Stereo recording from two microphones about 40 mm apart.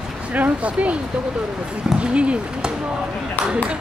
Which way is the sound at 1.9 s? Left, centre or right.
Right.